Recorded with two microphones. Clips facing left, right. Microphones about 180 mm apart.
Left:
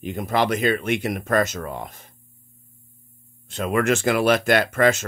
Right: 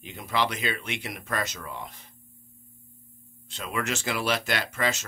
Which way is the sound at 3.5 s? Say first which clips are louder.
Left 10 dB; 50° left (ahead or behind).